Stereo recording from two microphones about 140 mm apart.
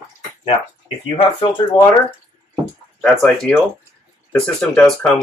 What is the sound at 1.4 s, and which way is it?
Speech, 35° left (ahead or behind).